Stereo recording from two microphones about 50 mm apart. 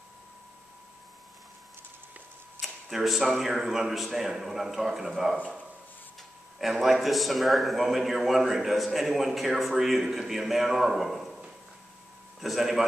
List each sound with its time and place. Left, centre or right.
2.6 s a man's voice: centre
6.6 s a man's voice: centre
12.4 s a man's voice: centre